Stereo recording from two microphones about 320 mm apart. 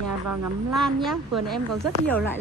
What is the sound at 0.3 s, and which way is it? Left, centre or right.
Speech, right.